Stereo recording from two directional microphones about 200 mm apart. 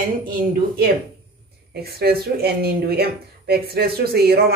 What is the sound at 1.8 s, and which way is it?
Speech, 50° right (ahead or behind).